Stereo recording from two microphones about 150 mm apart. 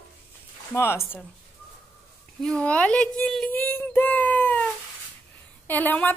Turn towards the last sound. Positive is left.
turn(degrees=10)  # may be behind; listen again after turning